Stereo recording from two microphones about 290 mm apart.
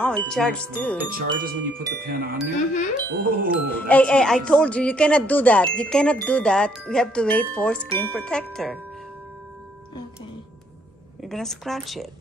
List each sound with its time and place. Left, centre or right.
0.0 s speech: centre
1.0 s speech: right
2.0 s music: right
3.0 s speech: centre
11.2 s speech: centre